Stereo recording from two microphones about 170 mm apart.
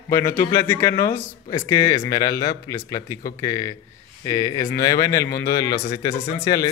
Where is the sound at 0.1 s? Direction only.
15° left (ahead or behind).